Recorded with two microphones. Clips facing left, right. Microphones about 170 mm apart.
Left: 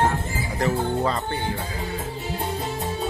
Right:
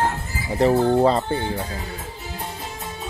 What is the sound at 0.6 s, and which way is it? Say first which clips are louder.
Speech: right 7 dB; 30° right (ahead or behind).